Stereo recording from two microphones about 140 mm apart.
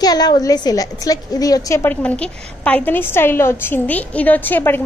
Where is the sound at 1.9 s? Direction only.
10° left (ahead or behind).